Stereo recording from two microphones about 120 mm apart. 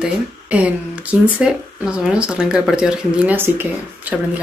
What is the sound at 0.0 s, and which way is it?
Speech, 10° right (ahead or behind).